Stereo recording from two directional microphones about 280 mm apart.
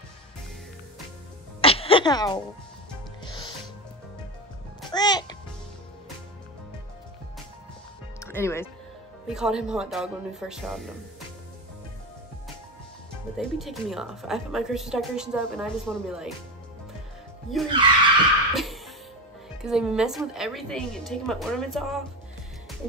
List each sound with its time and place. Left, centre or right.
1.6 s music: centre
4.8 s music: centre
8.2 s music: centre
9.3 s a woman's voice: centre
13.4 s a woman's voice: centre
17.5 s a woman's voice: centre
18.5 s music: centre
19.6 s a woman's voice: centre